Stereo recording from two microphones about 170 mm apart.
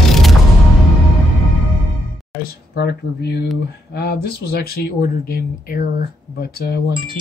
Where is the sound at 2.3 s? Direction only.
65° left (ahead or behind).